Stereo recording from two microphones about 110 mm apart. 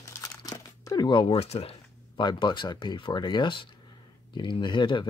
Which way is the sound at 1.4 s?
65° left (ahead or behind).